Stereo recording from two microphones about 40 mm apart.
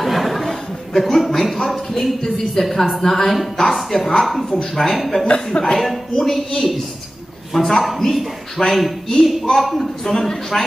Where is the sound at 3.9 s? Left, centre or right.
Centre.